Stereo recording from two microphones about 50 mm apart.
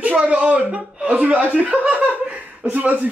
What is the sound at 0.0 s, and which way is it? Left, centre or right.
A man's voice, right.